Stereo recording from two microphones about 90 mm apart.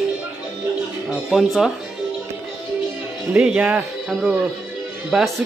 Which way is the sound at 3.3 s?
10° right (ahead or behind).